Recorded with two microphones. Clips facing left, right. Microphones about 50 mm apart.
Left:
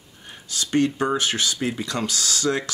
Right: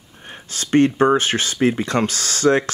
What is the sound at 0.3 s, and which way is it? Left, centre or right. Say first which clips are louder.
Speech: right 5 dB; right.